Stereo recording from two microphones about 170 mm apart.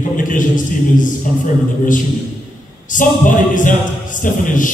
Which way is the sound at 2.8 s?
50° left (ahead or behind).